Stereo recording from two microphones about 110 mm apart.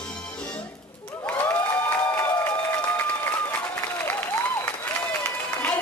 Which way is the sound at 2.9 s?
20° left (ahead or behind).